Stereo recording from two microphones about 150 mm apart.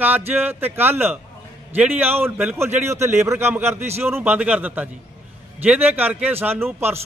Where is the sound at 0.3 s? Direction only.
15° right (ahead or behind).